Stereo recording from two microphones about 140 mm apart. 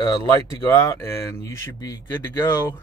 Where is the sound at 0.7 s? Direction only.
20° left (ahead or behind).